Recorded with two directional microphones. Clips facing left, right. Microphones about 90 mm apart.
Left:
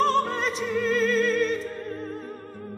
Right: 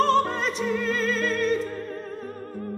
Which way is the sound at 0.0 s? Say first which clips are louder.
Right 1 dB; centre (ahead or behind).